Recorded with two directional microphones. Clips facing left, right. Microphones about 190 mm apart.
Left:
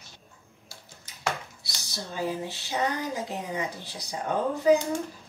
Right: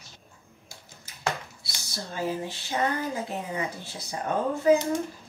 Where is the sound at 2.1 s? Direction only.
15° left (ahead or behind).